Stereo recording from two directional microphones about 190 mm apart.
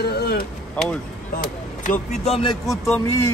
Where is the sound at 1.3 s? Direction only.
40° left (ahead or behind).